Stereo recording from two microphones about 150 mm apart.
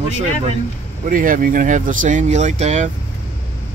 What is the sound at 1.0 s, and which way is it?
Speech, 65° right (ahead or behind).